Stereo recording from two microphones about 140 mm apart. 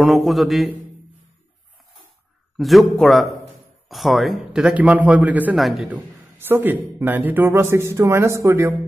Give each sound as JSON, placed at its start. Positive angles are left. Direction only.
{"t": 0.0, "sound": "a man's voice", "side_deg": 0}
{"t": 2.5, "sound": "a man's voice", "side_deg": 0}
{"t": 6.3, "sound": "speech", "side_deg": -15}